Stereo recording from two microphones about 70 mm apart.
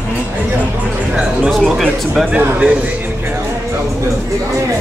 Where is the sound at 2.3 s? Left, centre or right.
Centre.